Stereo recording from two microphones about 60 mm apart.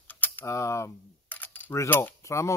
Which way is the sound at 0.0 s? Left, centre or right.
Left.